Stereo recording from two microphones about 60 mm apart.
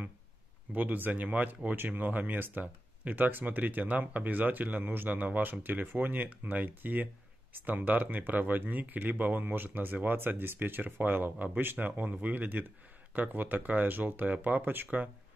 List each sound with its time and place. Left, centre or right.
0.7 s speech: right